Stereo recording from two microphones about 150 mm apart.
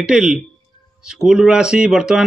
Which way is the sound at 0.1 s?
5° right (ahead or behind).